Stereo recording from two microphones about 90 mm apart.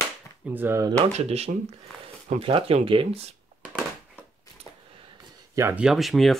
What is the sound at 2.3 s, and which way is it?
Speech, 85° right.